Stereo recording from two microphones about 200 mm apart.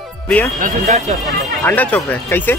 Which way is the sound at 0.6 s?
40° right (ahead or behind).